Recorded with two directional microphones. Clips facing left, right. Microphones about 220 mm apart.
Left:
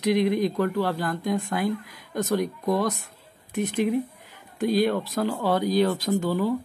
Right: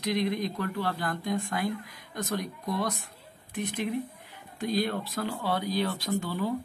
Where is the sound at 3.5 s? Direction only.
40° left (ahead or behind).